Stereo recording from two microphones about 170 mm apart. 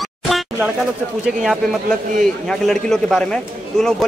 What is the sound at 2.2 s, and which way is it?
Speech, centre (ahead or behind).